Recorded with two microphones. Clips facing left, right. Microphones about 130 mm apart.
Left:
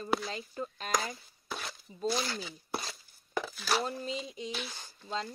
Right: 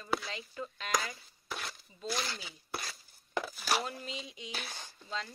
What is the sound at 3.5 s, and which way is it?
Speech, 5° right (ahead or behind).